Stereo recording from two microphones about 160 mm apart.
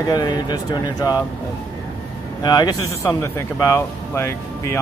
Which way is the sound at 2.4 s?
25° left (ahead or behind).